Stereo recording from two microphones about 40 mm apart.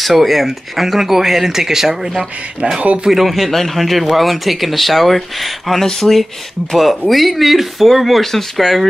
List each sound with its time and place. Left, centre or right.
0.0 s a man's voice: centre
2.6 s speech: right
3.1 s a man's voice: centre